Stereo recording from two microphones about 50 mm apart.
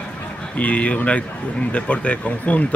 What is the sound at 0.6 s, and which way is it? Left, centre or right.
Speech, left.